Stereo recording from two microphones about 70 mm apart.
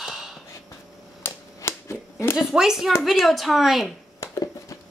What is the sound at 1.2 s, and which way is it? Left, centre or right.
Typewriter, left.